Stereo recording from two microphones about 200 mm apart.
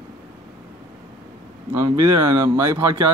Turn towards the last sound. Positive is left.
turn(degrees=-15)  # may be behind; listen again after turning